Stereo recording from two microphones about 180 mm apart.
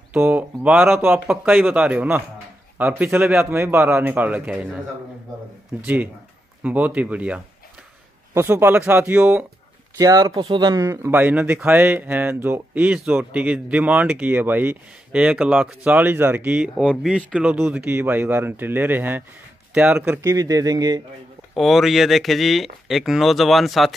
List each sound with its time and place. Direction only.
0.1 s speech: 10° right (ahead or behind)
6.6 s speech: 10° right (ahead or behind)
9.9 s speech: 20° right (ahead or behind)
21.5 s speech: centre (ahead or behind)